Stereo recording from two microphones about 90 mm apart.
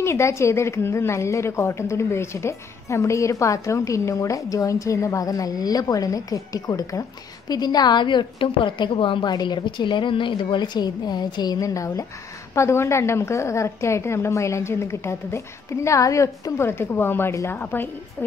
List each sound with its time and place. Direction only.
0.0 s a woman's voice: 30° left (ahead or behind)